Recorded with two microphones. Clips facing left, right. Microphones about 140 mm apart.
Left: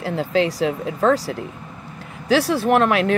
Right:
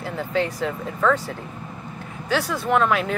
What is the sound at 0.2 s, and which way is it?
Speech, 90° left.